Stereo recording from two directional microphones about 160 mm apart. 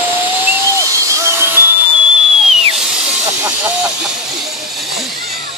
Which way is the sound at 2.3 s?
5° right (ahead or behind).